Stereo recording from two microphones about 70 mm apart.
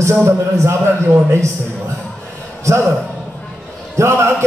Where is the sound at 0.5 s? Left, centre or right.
Right.